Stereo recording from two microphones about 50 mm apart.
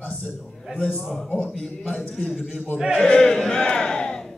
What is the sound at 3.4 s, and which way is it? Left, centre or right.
Crowd, centre.